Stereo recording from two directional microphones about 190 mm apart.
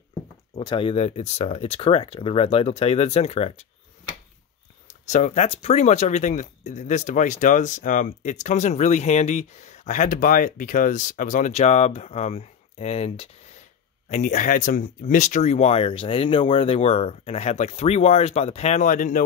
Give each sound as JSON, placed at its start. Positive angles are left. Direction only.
{"t": 0.6, "sound": "speech", "side_deg": 25}
{"t": 5.0, "sound": "speech", "side_deg": 40}